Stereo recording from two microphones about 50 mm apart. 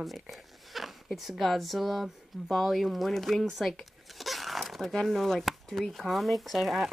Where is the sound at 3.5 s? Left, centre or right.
Centre.